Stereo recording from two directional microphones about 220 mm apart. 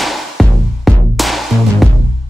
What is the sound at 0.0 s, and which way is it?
Music, centre (ahead or behind).